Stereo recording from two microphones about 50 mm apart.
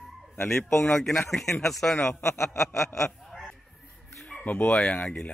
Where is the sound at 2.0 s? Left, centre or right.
Left.